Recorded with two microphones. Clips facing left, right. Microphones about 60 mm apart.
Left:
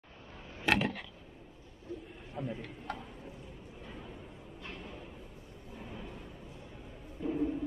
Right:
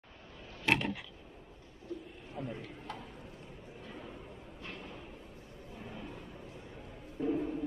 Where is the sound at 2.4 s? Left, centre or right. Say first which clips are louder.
Left 2 dB; centre.